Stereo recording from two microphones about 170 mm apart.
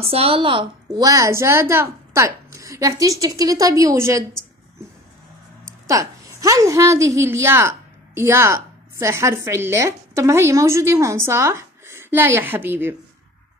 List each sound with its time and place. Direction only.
0.0 s a woman's voice: 35° right (ahead or behind); by 4.2 s 15° right (ahead or behind)
5.9 s a woman's voice: 20° right (ahead or behind)